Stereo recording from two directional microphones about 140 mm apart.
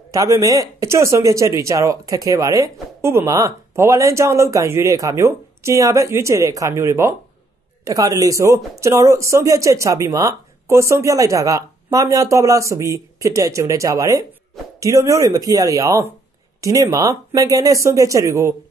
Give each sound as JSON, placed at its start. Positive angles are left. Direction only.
{"t": 0.1, "sound": "speech", "side_deg": -25}